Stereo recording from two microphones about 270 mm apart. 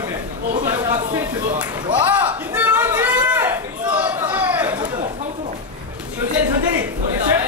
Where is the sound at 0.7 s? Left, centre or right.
Centre.